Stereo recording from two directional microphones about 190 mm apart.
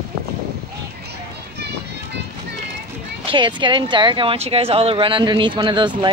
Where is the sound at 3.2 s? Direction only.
25° right (ahead or behind).